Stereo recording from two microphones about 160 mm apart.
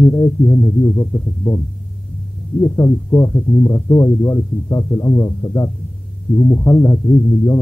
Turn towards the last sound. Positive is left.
turn(degrees=25)  # may be behind; listen again after turning